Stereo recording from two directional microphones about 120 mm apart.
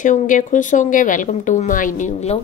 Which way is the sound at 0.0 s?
90° left.